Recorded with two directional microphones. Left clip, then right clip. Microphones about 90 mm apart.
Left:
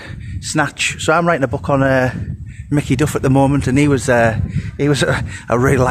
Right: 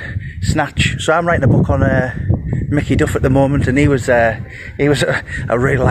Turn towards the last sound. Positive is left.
turn(degrees=35)  # may be behind; listen again after turning